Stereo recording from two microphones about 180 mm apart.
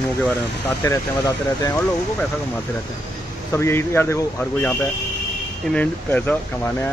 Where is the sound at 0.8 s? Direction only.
20° left (ahead or behind).